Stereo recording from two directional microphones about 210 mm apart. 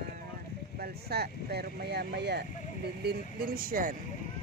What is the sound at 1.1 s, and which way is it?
Speech, 50° right (ahead or behind).